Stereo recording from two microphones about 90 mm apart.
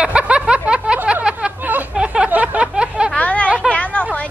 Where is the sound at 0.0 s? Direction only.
10° right (ahead or behind).